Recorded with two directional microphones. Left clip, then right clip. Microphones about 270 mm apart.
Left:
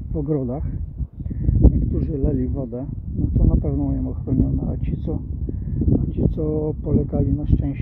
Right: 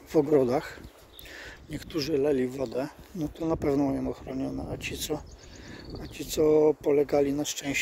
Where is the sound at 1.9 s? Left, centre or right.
Centre.